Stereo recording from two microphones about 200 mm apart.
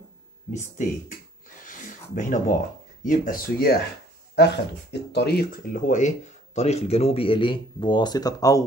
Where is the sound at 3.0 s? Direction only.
45° left (ahead or behind).